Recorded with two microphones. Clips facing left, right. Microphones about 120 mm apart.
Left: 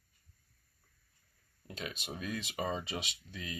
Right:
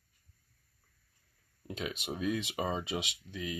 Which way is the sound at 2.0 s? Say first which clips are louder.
Right 8 dB; 15° right (ahead or behind).